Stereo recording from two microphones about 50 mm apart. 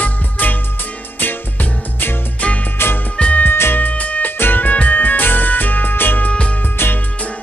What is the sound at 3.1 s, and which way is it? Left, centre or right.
Music, left.